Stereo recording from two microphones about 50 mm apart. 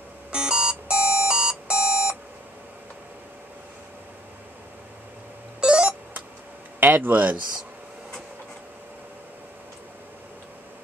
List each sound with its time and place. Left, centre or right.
0.3 s alarm clock: centre
5.6 s a sound: centre
6.9 s speech: right